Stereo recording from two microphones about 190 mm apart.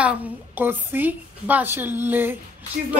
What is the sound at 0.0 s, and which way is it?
A woman's voice, 10° right (ahead or behind).